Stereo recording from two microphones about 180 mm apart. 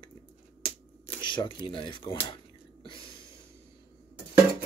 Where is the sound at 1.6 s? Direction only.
25° left (ahead or behind).